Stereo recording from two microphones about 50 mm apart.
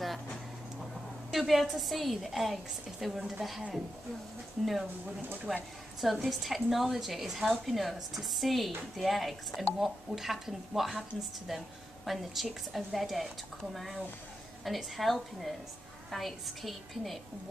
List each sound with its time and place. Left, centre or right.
1.3 s a woman's voice: centre
3.2 s a woman's voice: centre
5.5 s a woman's voice: centre